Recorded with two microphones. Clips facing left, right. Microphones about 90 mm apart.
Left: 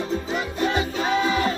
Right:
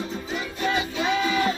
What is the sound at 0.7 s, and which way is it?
Music, 35° left (ahead or behind).